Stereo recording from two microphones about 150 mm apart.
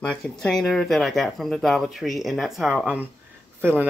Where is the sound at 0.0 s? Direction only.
5° left (ahead or behind).